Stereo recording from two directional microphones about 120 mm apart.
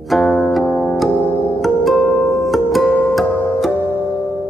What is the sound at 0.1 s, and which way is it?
Music, centre (ahead or behind).